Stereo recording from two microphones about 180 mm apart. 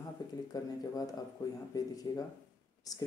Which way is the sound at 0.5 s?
20° left (ahead or behind).